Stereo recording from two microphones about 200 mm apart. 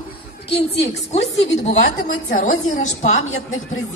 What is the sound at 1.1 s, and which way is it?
Speech, 35° left (ahead or behind).